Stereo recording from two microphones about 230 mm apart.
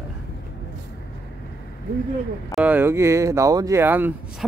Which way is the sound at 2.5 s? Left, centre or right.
Centre.